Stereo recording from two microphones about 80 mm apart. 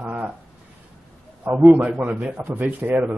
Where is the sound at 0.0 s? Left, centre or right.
Centre.